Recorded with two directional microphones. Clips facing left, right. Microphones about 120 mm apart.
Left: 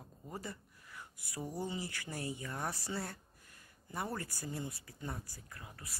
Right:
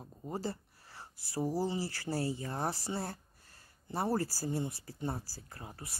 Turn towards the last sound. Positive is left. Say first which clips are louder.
# right 4 dB
turn(degrees=-30)  # may be behind; listen again after turning